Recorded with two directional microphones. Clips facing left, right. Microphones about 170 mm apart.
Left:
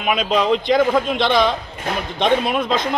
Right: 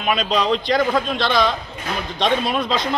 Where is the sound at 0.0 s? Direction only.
10° left (ahead or behind).